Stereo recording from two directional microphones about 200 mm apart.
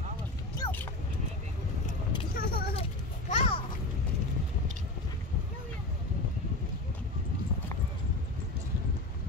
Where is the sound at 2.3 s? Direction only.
50° left (ahead or behind).